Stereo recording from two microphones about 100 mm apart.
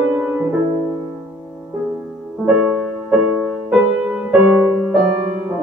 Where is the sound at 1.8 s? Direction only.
15° right (ahead or behind).